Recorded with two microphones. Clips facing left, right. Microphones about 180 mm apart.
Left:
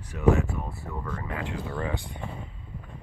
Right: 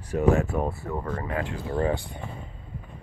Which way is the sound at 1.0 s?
45° right (ahead or behind).